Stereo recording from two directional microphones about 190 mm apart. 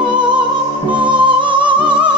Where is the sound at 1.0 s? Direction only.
25° right (ahead or behind).